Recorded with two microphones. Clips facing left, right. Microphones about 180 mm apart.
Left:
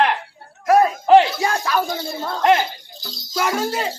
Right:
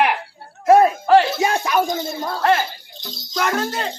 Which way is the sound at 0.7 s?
25° right (ahead or behind).